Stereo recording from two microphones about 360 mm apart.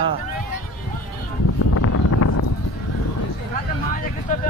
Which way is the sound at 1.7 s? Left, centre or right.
Left.